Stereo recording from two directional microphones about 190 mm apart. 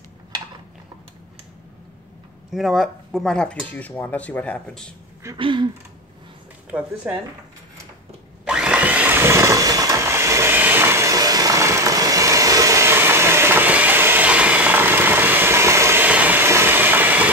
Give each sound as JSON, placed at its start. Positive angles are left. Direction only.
{"t": 2.5, "sound": "speech", "side_deg": 0}
{"t": 5.4, "sound": "a sound", "side_deg": -25}
{"t": 7.0, "sound": "speech", "side_deg": -5}
{"t": 8.5, "sound": "blender", "side_deg": -5}